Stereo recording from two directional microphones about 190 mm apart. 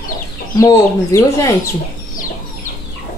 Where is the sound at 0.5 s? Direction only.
15° left (ahead or behind).